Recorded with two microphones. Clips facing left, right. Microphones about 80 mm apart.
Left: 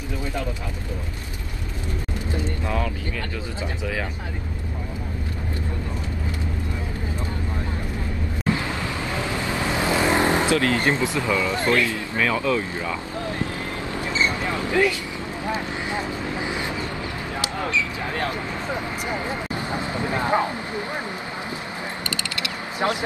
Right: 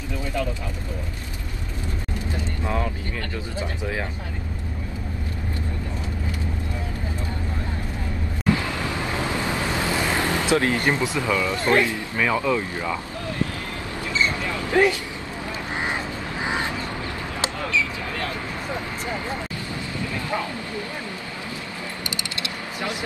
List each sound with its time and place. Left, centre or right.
2.6 s vehicle: centre
9.6 s vehicle: left
10.5 s speech: right
14.2 s vehicle: left
14.7 s speech: right
17.6 s a sound: left
19.0 s speech: left